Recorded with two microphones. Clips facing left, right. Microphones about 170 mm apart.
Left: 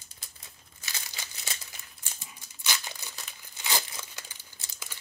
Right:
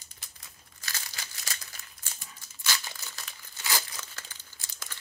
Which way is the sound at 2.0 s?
20° left (ahead or behind).